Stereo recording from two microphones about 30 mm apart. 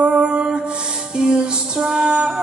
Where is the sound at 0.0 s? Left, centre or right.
Right.